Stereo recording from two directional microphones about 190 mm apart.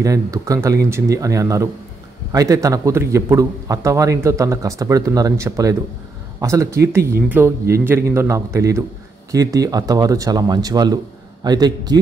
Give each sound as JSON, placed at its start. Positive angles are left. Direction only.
{"t": 0.0, "sound": "a man's voice", "side_deg": -15}